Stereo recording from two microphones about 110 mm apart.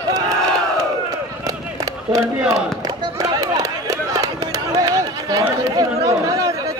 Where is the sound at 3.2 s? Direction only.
35° right (ahead or behind).